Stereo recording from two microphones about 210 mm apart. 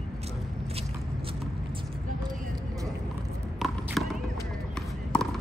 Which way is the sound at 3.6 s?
Centre (ahead or behind).